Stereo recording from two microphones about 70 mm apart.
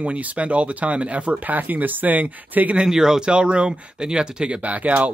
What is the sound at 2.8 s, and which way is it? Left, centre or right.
Speech, centre.